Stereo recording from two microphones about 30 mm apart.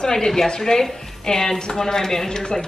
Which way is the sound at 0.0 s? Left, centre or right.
Left.